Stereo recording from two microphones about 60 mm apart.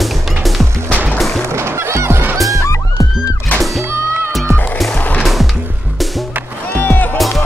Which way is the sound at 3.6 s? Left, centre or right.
Centre.